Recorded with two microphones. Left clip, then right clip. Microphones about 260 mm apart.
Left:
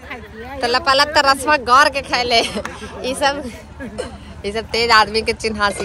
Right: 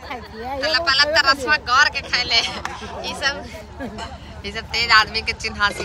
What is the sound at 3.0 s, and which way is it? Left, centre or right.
A woman's voice, centre.